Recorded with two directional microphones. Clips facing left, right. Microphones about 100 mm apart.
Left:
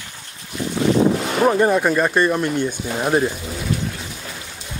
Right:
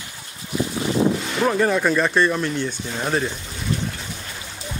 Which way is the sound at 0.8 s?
75° left (ahead or behind).